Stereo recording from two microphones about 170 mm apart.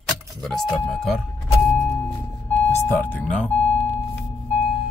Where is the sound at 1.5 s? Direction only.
15° left (ahead or behind).